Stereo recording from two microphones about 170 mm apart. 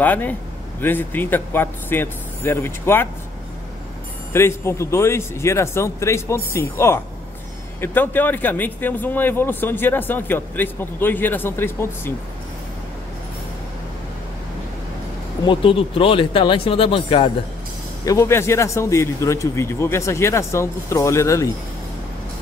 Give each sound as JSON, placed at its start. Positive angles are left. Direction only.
{"t": 0.0, "sound": "speech", "side_deg": 10}
{"t": 4.3, "sound": "speech", "side_deg": 15}
{"t": 15.4, "sound": "speech", "side_deg": 30}
{"t": 18.0, "sound": "speech", "side_deg": 15}